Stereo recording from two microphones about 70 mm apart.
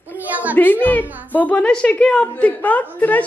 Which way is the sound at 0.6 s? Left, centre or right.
Left.